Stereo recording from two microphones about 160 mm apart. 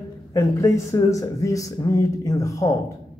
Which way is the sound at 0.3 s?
20° left (ahead or behind).